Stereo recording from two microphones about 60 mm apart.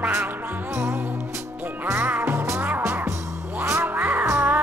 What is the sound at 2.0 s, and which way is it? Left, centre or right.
Music, right.